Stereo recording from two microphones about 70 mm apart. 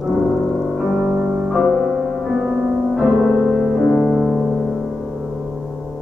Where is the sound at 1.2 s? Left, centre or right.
Centre.